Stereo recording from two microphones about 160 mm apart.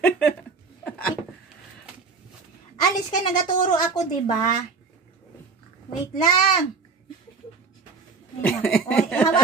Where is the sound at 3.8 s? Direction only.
20° left (ahead or behind).